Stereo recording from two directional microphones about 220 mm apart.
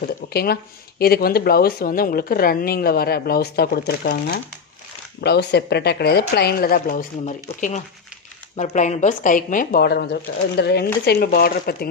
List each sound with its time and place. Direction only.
0.0 s speech: 45° left (ahead or behind)